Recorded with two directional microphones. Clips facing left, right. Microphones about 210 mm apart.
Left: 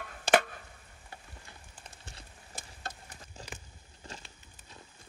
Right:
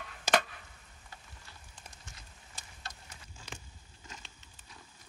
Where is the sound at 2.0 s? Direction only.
35° left (ahead or behind).